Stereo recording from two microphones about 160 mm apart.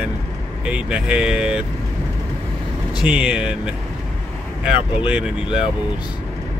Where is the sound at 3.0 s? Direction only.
5° right (ahead or behind).